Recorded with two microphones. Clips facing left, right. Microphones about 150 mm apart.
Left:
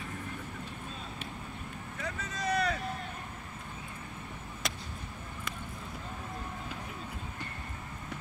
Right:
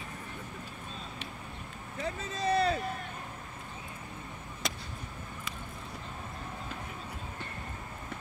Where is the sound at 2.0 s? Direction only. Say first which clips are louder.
Right 4 dB; 30° right (ahead or behind).